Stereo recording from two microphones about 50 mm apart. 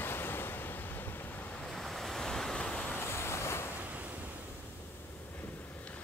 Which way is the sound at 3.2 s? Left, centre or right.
Left.